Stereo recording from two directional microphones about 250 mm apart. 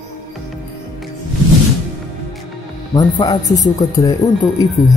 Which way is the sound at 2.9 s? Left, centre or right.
Centre.